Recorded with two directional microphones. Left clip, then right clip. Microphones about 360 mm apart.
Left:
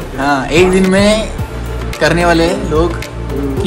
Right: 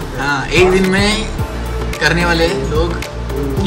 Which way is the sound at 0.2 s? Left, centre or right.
Centre.